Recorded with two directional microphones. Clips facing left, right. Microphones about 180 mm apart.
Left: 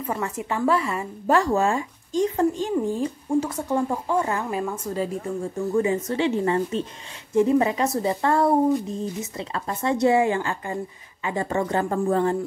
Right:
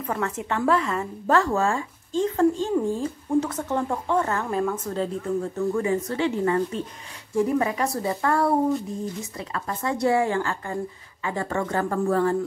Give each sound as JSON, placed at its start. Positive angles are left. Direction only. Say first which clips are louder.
{"t": 0.0, "sound": "speech", "louder": "even", "side_deg": 5}
{"t": 5.7, "sound": "speech", "louder": "left 4 dB", "side_deg": 20}